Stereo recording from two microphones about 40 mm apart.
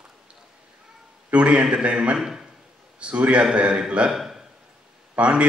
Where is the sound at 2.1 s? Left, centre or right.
Centre.